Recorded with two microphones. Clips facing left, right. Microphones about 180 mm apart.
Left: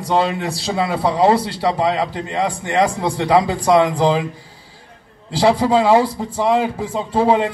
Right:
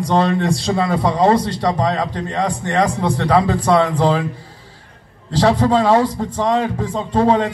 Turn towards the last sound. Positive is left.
turn(degrees=10)  # may be behind; listen again after turning